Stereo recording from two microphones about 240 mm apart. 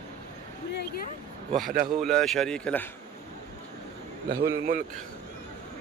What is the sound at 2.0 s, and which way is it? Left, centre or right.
Speech, centre.